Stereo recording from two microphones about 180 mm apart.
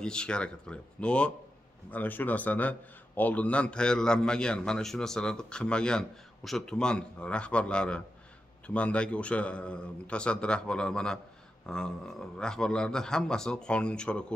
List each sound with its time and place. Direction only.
0.0 s a man's voice: 5° left (ahead or behind)